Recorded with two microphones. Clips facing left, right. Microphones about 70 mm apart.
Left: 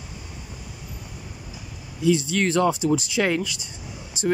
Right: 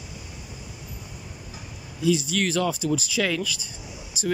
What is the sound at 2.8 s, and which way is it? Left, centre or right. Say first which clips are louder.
Speech: left 3 dB; left.